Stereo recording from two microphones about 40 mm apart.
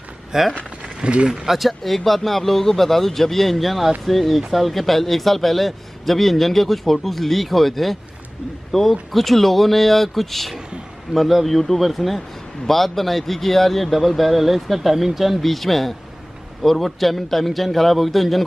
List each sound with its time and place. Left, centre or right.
0.3 s speech: centre
0.9 s speech: right
1.3 s a man's voice: centre